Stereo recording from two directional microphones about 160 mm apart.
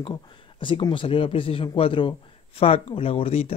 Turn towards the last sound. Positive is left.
turn(degrees=35)  # may be behind; listen again after turning